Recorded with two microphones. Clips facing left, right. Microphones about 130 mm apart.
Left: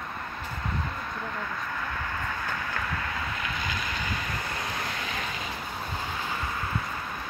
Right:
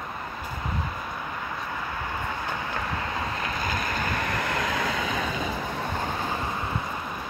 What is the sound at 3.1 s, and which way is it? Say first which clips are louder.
Vehicle: right 3 dB; 35° right (ahead or behind).